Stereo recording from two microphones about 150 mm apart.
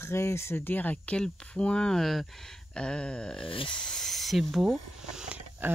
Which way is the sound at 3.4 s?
35° left (ahead or behind).